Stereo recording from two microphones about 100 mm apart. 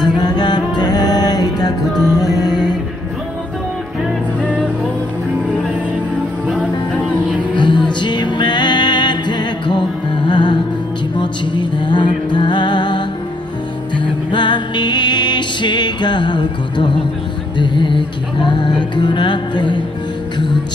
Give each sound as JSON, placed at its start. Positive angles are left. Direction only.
{"t": 0.0, "sound": "music", "side_deg": 45}
{"t": 6.4, "sound": "music", "side_deg": -10}
{"t": 7.5, "sound": "music", "side_deg": 50}